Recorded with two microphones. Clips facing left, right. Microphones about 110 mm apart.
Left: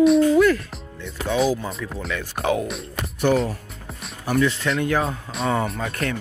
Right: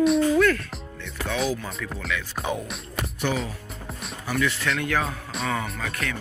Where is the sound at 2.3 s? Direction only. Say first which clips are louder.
Left 10 dB; 70° left (ahead or behind).